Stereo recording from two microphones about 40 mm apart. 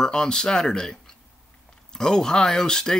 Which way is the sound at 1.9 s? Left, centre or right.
Centre.